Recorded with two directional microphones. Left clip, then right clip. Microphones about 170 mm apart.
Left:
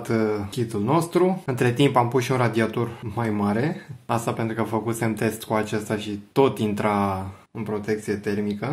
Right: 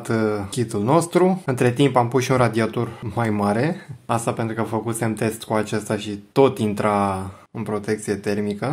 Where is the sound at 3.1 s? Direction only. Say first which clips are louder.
Right 5 dB; 40° right (ahead or behind).